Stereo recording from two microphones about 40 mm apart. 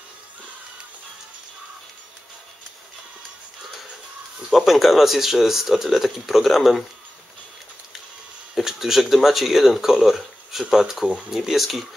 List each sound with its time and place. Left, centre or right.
4.5 s speech: centre
8.5 s speech: centre